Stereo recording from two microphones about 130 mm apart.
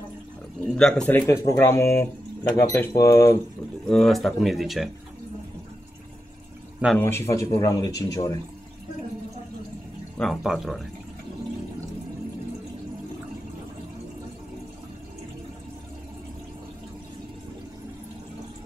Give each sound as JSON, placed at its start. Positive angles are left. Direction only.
{"t": 0.7, "sound": "speech", "side_deg": 5}
{"t": 1.2, "sound": "speech", "side_deg": 25}
{"t": 3.8, "sound": "speech", "side_deg": 5}
{"t": 7.0, "sound": "speech", "side_deg": 20}
{"t": 10.1, "sound": "speech", "side_deg": 0}